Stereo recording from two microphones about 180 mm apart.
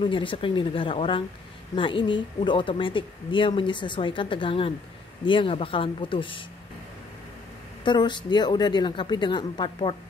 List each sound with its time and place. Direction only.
0.0 s a woman's voice: 30° left (ahead or behind)
7.8 s a woman's voice: 25° left (ahead or behind)